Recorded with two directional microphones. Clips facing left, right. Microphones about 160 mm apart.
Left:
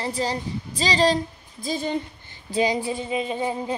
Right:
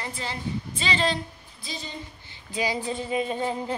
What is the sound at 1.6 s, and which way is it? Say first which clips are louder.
Speech: left 12 dB; 50° left (ahead or behind).